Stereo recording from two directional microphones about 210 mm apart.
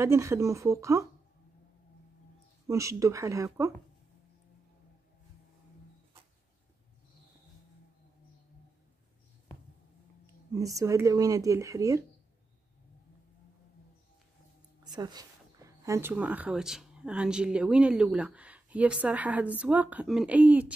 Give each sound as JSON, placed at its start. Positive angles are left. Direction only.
{"t": 0.0, "sound": "speech", "side_deg": -15}
{"t": 2.7, "sound": "speech", "side_deg": -15}
{"t": 10.5, "sound": "speech", "side_deg": -15}
{"t": 14.8, "sound": "speech", "side_deg": -20}